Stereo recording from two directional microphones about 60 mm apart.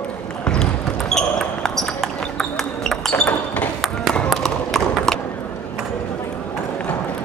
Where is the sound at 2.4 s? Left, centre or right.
Centre.